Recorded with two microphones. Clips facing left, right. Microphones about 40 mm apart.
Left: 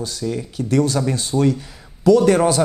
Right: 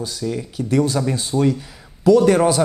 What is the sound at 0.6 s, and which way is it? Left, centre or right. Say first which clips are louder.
Speech: even; centre.